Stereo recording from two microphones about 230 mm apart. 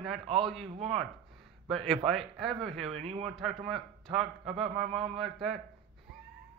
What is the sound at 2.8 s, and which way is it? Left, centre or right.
Speech, right.